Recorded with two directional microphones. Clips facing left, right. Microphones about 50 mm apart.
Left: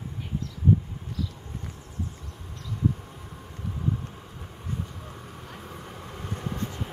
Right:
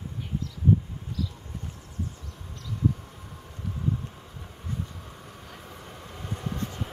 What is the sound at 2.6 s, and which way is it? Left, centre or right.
Vehicle, centre.